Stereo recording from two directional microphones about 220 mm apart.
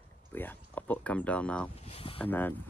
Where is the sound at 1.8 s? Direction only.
25° left (ahead or behind).